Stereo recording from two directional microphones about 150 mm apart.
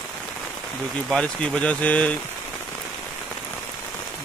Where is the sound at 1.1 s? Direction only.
5° left (ahead or behind).